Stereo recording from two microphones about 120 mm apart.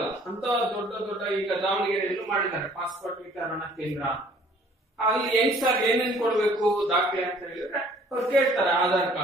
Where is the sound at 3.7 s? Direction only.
Centre (ahead or behind).